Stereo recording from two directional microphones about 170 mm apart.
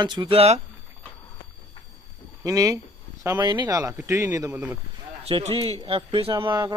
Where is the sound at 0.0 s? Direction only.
25° right (ahead or behind).